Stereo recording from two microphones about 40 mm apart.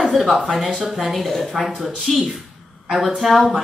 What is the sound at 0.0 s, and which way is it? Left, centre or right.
A woman's voice, centre.